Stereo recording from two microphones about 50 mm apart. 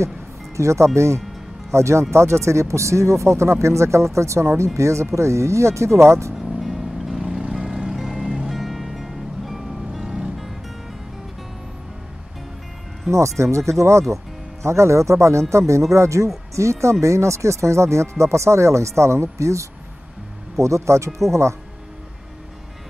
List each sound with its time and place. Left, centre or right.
0.6 s speech: right
6.6 s vehicle: centre
7.2 s music: centre
13.1 s speech: right